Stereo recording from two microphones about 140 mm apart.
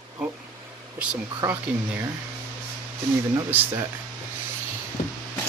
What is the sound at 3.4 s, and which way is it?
Speech, 15° right (ahead or behind).